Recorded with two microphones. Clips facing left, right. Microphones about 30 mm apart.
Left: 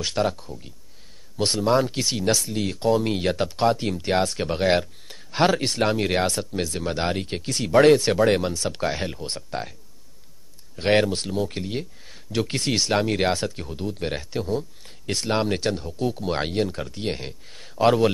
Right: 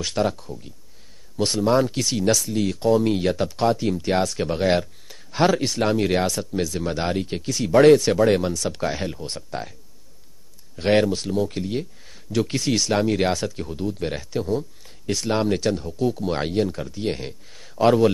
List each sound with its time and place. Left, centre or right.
0.0 s speech: centre
6.8 s speech: centre
7.7 s speech: centre
10.8 s speech: centre